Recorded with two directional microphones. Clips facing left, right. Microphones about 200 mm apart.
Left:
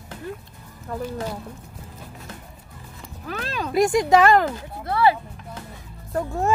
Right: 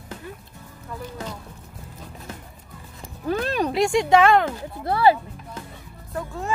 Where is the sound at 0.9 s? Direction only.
45° left (ahead or behind).